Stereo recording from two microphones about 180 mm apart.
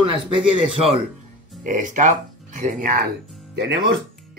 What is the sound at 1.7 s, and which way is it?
Speech, 45° right (ahead or behind).